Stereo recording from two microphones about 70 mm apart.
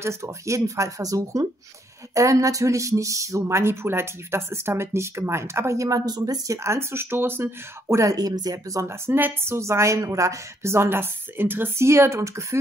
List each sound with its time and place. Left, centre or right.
0.0 s speech: right
8.0 s speech: right
8.8 s speech: right